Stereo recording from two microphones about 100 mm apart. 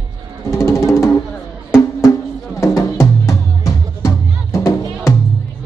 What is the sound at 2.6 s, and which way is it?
Music, 30° left (ahead or behind).